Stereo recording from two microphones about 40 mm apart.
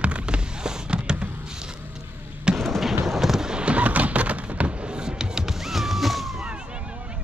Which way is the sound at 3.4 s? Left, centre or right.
Right.